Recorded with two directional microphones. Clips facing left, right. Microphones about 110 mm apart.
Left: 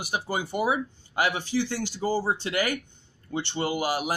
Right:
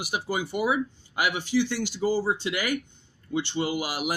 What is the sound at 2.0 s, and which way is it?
Speech, 40° left (ahead or behind).